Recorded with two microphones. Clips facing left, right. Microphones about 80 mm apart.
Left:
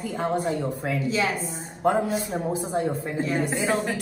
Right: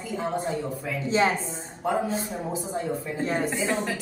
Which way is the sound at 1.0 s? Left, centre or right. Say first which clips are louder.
Right 5 dB; right.